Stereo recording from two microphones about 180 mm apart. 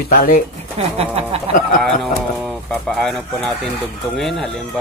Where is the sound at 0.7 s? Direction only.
35° right (ahead or behind).